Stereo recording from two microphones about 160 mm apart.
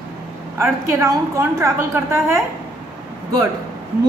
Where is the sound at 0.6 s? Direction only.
15° right (ahead or behind).